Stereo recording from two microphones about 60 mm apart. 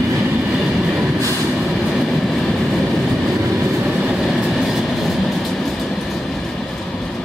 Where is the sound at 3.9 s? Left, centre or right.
Centre.